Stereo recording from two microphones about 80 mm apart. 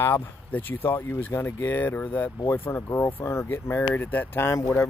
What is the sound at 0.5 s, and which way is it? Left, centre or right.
Speech, left.